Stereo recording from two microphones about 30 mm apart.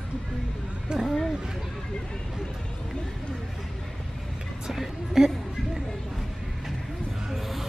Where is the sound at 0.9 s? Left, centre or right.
Right.